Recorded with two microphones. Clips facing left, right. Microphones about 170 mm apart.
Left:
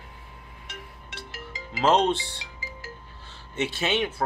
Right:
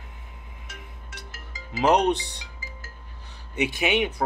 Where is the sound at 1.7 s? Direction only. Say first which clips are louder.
Right 1 dB; 15° right (ahead or behind).